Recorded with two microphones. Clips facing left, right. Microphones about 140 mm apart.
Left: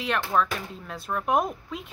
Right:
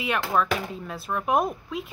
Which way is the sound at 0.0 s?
5° right (ahead or behind).